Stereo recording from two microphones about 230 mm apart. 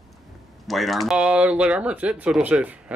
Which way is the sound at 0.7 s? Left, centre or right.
Centre.